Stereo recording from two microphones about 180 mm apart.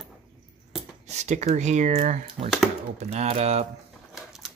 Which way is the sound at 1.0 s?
40° right (ahead or behind).